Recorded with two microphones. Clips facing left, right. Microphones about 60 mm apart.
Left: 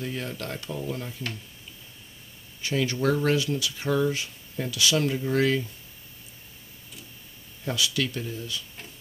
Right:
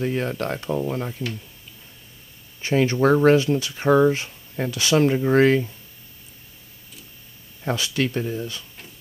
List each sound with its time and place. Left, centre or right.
0.0 s speech: right
2.6 s speech: right
7.6 s speech: right